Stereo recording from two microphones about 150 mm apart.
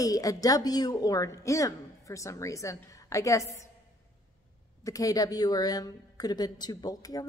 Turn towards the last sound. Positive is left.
turn(degrees=25)  # may be behind; listen again after turning